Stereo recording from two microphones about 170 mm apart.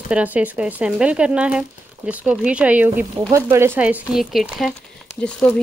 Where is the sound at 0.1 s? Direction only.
10° right (ahead or behind).